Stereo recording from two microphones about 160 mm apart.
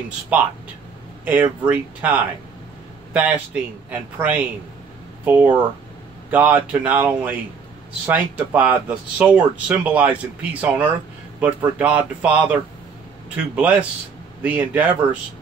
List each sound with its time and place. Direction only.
0.3 s speech: 10° right (ahead or behind)